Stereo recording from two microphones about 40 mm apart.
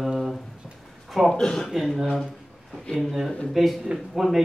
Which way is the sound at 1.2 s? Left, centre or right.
Centre.